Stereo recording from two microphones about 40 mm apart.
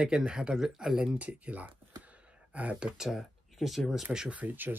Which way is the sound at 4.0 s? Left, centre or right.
Centre.